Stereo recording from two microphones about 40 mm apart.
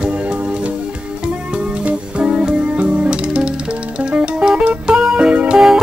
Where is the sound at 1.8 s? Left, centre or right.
Right.